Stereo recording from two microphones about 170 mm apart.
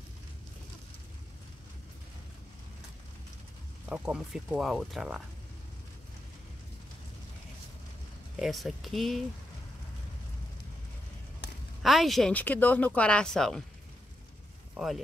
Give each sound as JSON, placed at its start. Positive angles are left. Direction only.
{"t": 3.9, "sound": "speech", "side_deg": -5}
{"t": 8.4, "sound": "speech", "side_deg": 0}
{"t": 11.4, "sound": "a sound", "side_deg": 80}
{"t": 11.8, "sound": "speech", "side_deg": 0}